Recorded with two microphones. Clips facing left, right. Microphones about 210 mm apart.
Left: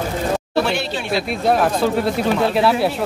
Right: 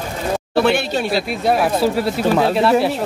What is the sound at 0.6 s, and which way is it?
Speech, 55° right (ahead or behind).